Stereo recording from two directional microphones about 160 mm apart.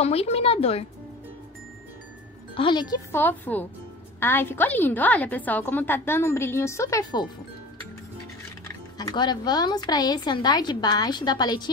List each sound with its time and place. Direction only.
0.0 s speech: 40° left (ahead or behind)
2.5 s a woman's voice: 30° left (ahead or behind)
3.1 s a woman's voice: 10° left (ahead or behind)
8.9 s a woman's voice: 25° left (ahead or behind)